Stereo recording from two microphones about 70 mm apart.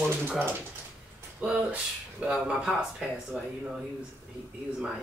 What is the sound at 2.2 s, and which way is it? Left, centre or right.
Speech, centre.